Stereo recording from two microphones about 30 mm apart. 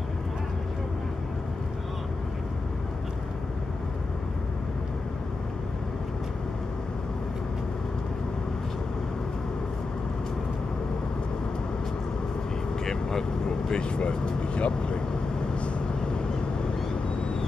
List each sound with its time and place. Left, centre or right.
12.8 s vehicle: left